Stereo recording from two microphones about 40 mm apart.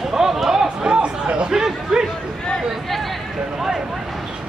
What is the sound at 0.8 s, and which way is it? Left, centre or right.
Speech, right.